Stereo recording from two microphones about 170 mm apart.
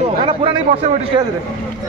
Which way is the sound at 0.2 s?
30° right (ahead or behind).